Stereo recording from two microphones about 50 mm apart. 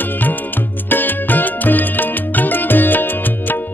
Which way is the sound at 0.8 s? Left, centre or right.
Left.